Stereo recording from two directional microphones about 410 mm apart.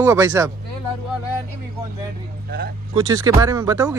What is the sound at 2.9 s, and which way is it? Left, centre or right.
Speech, centre.